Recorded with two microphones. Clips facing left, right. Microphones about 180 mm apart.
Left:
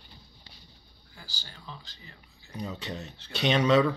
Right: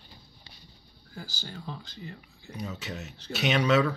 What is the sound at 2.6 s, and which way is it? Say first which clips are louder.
Speech: left 1 dB; 5° right (ahead or behind).